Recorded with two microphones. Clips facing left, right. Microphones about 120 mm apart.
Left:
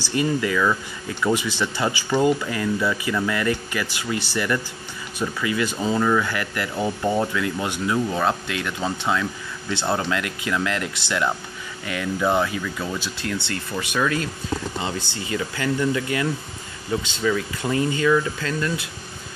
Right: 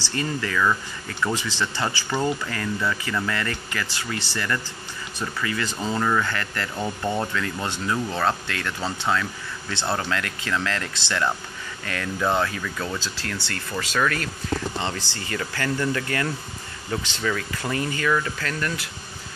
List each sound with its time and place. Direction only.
0.0 s speech: 15° left (ahead or behind)